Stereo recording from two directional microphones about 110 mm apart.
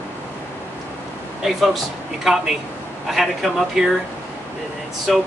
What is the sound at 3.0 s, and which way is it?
Speech, centre (ahead or behind).